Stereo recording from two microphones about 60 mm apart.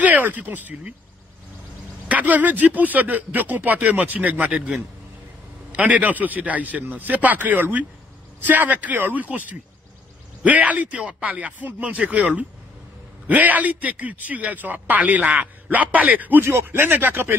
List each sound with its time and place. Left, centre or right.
0.0 s speech: right
2.0 s a man's voice: right
10.4 s a man's voice: right
13.3 s a man's voice: right